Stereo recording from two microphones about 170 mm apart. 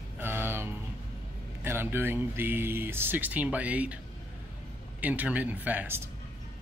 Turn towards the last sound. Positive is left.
turn(degrees=-10)  # may be behind; listen again after turning